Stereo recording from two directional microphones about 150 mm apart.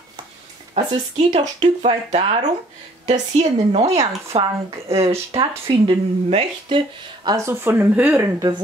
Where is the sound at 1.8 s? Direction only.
45° right (ahead or behind).